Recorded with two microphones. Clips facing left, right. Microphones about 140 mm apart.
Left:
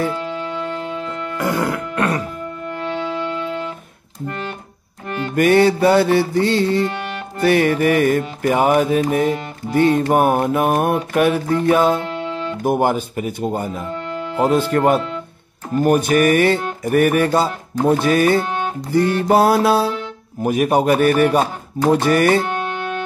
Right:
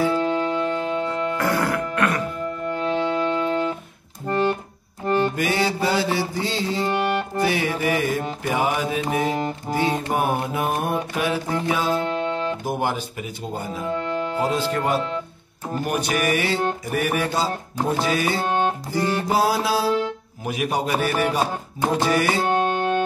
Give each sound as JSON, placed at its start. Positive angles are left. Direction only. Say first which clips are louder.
{"t": 1.4, "sound": "music", "louder": "left 5 dB", "side_deg": 20}
{"t": 3.3, "sound": "music", "louder": "right 3 dB", "side_deg": -40}
{"t": 5.3, "sound": "mantra", "louder": "left 9 dB", "side_deg": 55}
{"t": 6.9, "sound": "music", "louder": "right 5 dB", "side_deg": -35}
{"t": 7.4, "sound": "mantra", "louder": "left 10 dB", "side_deg": 60}
{"t": 12.6, "sound": "speech", "louder": "left 7 dB", "side_deg": 50}
{"t": 16.8, "sound": "mantra", "louder": "left 8 dB", "side_deg": 55}
{"t": 18.4, "sound": "music", "louder": "right 1 dB", "side_deg": -35}
{"t": 18.9, "sound": "mantra", "louder": "left 7 dB", "side_deg": 60}
{"t": 20.4, "sound": "speech", "louder": "left 9 dB", "side_deg": 50}
{"t": 22.0, "sound": "mantra", "louder": "left 4 dB", "side_deg": 55}
{"t": 22.4, "sound": "music", "louder": "right 2 dB", "side_deg": -35}